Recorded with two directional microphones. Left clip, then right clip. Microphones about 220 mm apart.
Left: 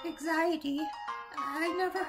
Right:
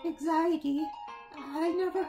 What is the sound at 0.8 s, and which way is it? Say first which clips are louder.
Speech: even; 40° left (ahead or behind).